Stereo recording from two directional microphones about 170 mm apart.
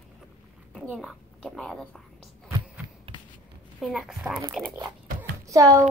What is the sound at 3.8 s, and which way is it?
Speech, centre (ahead or behind).